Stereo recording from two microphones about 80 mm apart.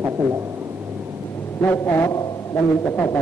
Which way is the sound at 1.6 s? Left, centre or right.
Left.